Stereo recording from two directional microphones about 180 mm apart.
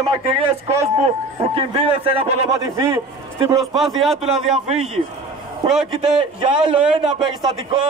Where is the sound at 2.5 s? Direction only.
15° right (ahead or behind).